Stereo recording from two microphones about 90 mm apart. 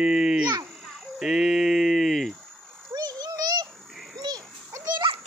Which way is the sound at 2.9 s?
45° right (ahead or behind).